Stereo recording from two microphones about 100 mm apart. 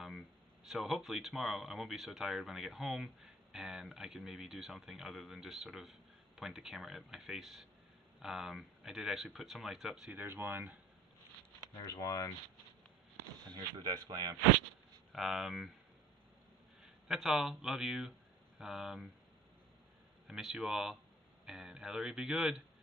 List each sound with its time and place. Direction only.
0.7 s speech: 5° right (ahead or behind)
10.2 s speech: 20° right (ahead or behind)
11.8 s speech: 35° left (ahead or behind)
13.5 s speech: 45° right (ahead or behind)
15.1 s speech: centre (ahead or behind)
16.8 s speech: centre (ahead or behind)
20.2 s speech: centre (ahead or behind)